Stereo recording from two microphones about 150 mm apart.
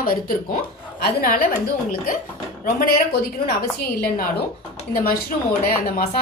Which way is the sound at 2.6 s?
80° left.